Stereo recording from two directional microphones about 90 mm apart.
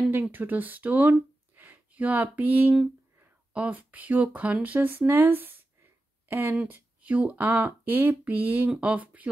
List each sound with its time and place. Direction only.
0.1 s speech: 20° right (ahead or behind)